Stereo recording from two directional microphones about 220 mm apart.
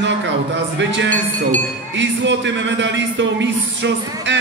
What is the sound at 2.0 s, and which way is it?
Speech, 55° right (ahead or behind).